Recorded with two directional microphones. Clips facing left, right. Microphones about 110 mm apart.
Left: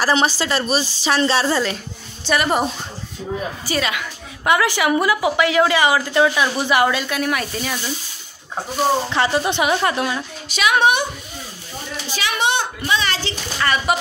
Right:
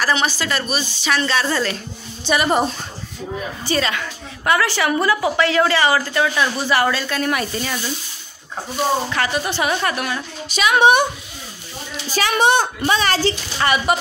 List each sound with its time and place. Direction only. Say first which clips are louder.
0.0 s speech: left 2 dB; 30° left (ahead or behind)
1.5 s a woman's voice: left 1 dB; 15° left (ahead or behind)
2.2 s a woman's voice: right 1 dB; centre (ahead or behind)
3.6 s a woman's voice: right 4 dB; 5° left (ahead or behind)
9.1 s a woman's voice: left 3 dB; 25° left (ahead or behind)
10.5 s a woman's voice: even; centre (ahead or behind)
12.1 s a child's voice: right 5 dB; 40° right (ahead or behind)
13.9 s a woman's voice: left 1 dB; centre (ahead or behind)